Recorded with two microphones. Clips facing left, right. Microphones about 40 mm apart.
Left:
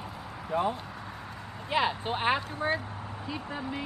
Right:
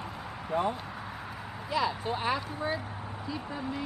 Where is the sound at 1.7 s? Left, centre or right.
Left.